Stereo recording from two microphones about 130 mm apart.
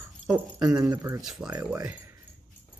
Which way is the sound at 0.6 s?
25° right (ahead or behind).